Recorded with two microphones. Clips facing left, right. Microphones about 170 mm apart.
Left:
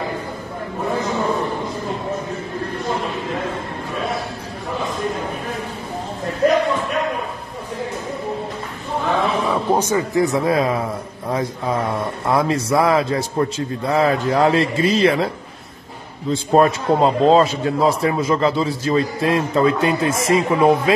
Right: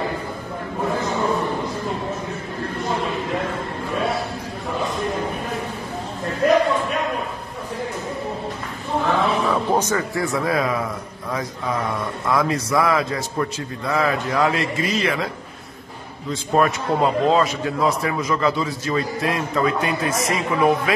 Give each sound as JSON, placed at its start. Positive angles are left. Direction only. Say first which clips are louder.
{"t": 9.5, "sound": "a man's voice", "louder": "left 2 dB", "side_deg": 10}
{"t": 16.3, "sound": "a man's voice", "louder": "left 4 dB", "side_deg": 30}